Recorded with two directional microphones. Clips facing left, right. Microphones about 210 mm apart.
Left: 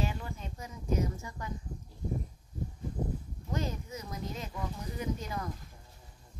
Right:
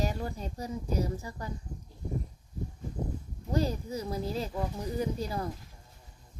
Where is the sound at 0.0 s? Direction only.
40° right (ahead or behind).